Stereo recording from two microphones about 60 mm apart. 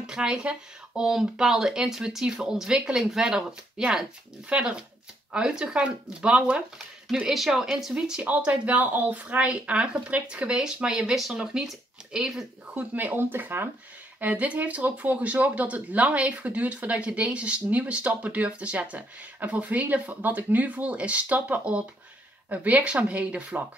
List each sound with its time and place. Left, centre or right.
0.0 s speech: centre
7.2 s speech: centre
8.3 s speech: right; by 12.8 s centre
12.9 s speech: right
14.2 s speech: right